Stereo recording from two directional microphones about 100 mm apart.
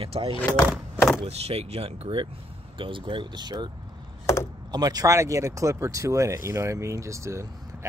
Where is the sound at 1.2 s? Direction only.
90° right; by 2.2 s 70° right (ahead or behind).